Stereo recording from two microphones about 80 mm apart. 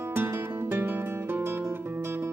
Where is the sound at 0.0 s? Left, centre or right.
Right.